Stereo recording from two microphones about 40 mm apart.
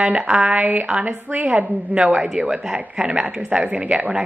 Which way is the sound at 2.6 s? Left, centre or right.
Right.